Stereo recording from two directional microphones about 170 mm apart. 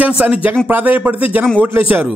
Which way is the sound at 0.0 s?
5° right (ahead or behind).